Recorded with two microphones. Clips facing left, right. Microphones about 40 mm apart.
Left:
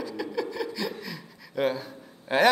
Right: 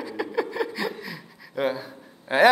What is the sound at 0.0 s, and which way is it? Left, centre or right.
A man's voice, centre.